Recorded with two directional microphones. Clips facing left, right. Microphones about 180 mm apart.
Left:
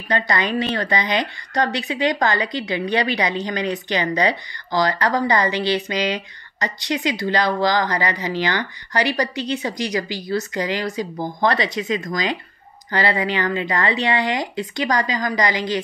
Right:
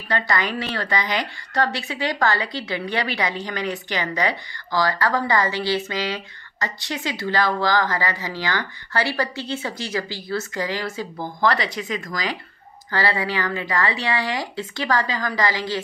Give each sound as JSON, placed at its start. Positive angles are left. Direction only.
{"t": 0.3, "sound": "a woman's voice", "side_deg": 20}